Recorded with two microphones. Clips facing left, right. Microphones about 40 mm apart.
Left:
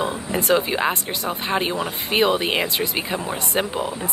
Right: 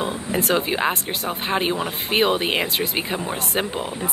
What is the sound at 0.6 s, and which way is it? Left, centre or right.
Speech, centre.